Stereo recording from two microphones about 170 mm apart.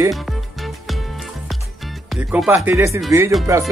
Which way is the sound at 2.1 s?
5° right (ahead or behind).